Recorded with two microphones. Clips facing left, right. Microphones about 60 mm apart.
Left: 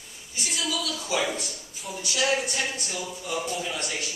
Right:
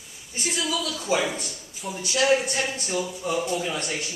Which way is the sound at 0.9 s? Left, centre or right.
Right.